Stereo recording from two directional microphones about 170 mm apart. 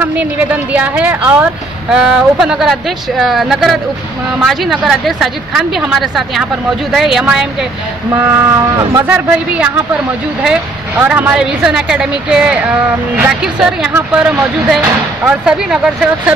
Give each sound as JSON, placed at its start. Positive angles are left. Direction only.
{"t": 0.0, "sound": "speech", "side_deg": -10}
{"t": 8.7, "sound": "speech", "side_deg": -15}